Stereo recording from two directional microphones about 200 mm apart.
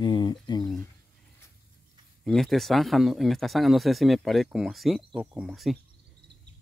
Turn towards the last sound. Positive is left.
turn(degrees=0)  # may be behind; listen again after turning